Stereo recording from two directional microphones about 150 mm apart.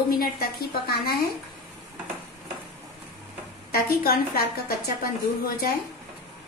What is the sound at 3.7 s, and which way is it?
A woman's voice, 90° left.